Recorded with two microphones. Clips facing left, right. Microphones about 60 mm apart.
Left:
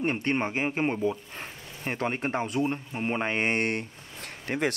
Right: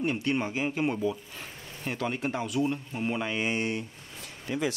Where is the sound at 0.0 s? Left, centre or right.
Left.